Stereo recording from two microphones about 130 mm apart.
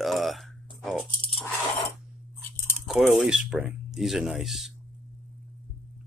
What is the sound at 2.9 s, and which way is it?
Speech, 5° right (ahead or behind).